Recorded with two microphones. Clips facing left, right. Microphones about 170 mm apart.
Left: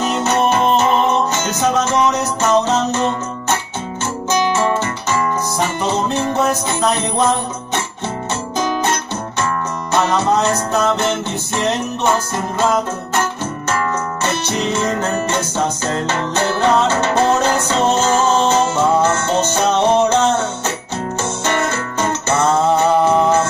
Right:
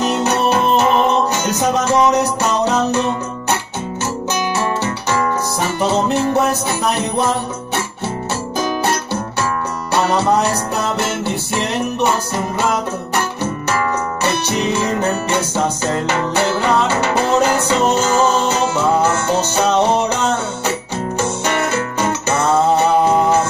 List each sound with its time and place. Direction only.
0.0 s music: 15° right (ahead or behind)
1.3 s music: 15° right (ahead or behind)
5.8 s music: 15° right (ahead or behind)
10.1 s music: 15° right (ahead or behind)
14.2 s music: 15° right (ahead or behind)
21.5 s music: 15° right (ahead or behind)